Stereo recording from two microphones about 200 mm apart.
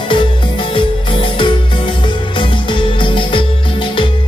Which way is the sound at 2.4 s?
25° left (ahead or behind).